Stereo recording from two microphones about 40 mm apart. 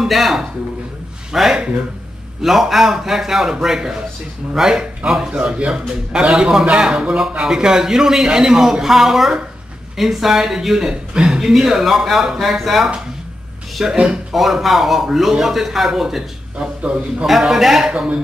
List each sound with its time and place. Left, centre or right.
0.0 s speech: centre
5.3 s a man's voice: right; by 10.9 s centre
10.9 s speech: centre
13.9 s a man's voice: right
14.3 s a man's voice: centre
16.5 s speech: right
17.3 s speech: centre